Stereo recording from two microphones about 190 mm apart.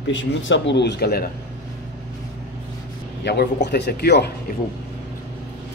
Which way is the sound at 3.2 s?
65° left (ahead or behind).